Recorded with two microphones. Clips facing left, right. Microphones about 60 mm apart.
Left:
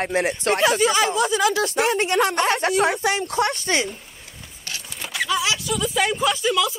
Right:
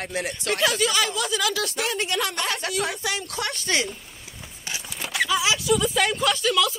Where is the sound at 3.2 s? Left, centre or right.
Left.